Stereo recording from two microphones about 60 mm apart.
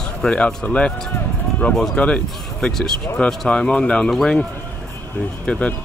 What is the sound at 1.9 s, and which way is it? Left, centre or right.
Speech, centre.